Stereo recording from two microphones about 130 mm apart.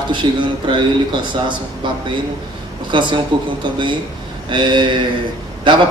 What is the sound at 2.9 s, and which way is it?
Speech, 40° right (ahead or behind).